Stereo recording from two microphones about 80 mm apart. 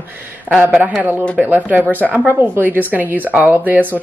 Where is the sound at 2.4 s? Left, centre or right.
Right.